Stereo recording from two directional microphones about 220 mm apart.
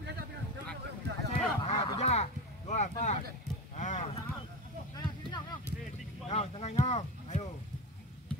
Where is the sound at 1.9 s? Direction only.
30° left (ahead or behind).